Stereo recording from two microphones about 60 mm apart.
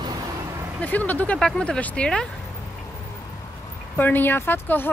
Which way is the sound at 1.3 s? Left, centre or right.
Centre.